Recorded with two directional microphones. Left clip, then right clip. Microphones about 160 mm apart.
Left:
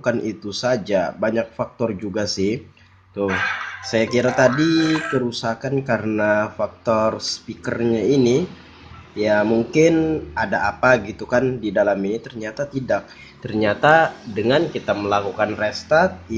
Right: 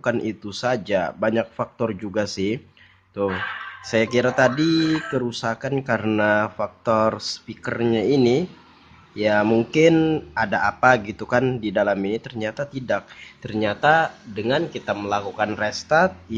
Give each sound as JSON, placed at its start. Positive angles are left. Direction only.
{"t": 0.0, "sound": "speech", "side_deg": -20}
{"t": 3.3, "sound": "speech", "side_deg": 0}
{"t": 3.9, "sound": "speech", "side_deg": -20}